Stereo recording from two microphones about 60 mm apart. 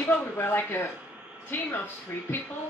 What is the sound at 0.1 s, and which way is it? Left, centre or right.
Speech, left.